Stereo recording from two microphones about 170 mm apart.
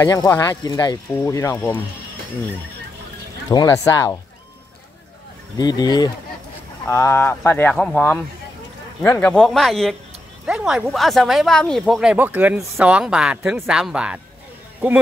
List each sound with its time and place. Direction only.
0.0 s speech: 20° left (ahead or behind)
3.4 s speech: 20° left (ahead or behind)
5.6 s speech: 25° left (ahead or behind); by 14.2 s 5° right (ahead or behind)